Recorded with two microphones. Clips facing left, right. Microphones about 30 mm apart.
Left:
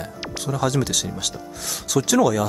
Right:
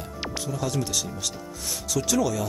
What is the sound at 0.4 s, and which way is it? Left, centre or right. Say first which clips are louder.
Speech: left 7 dB; left.